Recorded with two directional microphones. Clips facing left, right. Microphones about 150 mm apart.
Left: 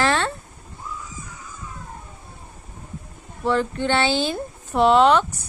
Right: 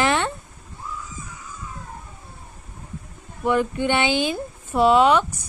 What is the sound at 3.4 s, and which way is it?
Speech, 15° right (ahead or behind).